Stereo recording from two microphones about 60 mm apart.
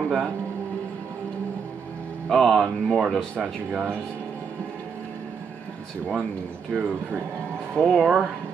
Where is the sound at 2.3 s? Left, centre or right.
Centre.